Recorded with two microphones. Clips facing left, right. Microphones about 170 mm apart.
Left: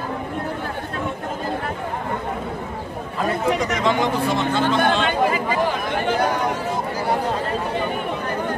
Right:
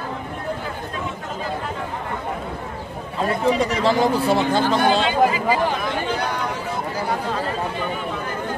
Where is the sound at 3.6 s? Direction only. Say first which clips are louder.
Right 2 dB; 35° right (ahead or behind).